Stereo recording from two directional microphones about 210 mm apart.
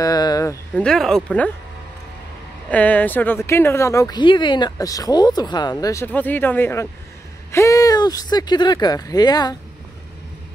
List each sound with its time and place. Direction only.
0.0 s a sound: 15° left (ahead or behind)
0.8 s speech: centre (ahead or behind)
2.7 s speech: 5° left (ahead or behind)